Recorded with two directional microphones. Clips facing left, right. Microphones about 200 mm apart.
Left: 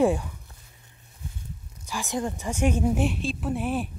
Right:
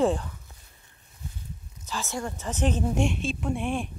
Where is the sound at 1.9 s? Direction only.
15° left (ahead or behind).